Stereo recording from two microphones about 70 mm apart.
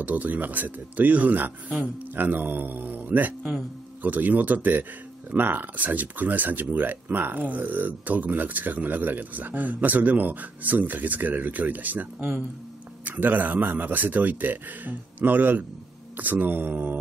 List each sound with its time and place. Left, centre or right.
0.0 s speech: right